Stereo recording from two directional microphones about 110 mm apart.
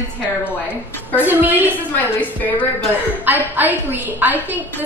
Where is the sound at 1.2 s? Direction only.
15° right (ahead or behind).